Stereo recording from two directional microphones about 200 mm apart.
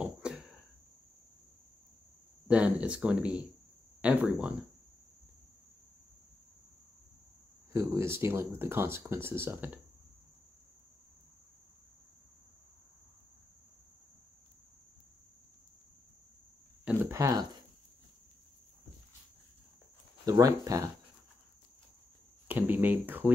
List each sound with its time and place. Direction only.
0.0 s cricket: 5° right (ahead or behind)
2.4 s speech: 5° right (ahead or behind)
7.7 s speech: 15° right (ahead or behind)
16.8 s a sound: 10° right (ahead or behind)
20.2 s speech: 15° right (ahead or behind)
22.5 s speech: 10° right (ahead or behind)